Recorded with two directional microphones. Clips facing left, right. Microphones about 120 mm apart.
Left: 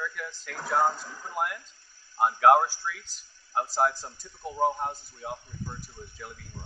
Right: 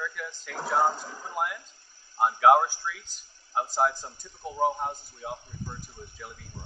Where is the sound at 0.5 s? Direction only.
15° right (ahead or behind).